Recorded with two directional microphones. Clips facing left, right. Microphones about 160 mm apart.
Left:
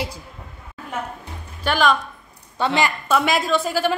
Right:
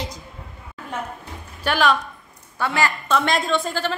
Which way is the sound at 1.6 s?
10° right (ahead or behind).